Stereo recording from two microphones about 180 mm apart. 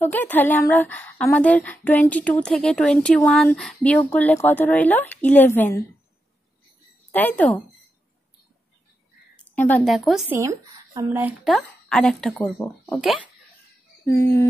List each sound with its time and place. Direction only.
0.0 s a woman's voice: 10° left (ahead or behind)
7.1 s speech: 10° left (ahead or behind)
9.4 s a woman's voice: 10° left (ahead or behind)
10.3 s speech: 15° right (ahead or behind)
11.4 s a woman's voice: centre (ahead or behind)
14.0 s a woman's voice: 15° left (ahead or behind)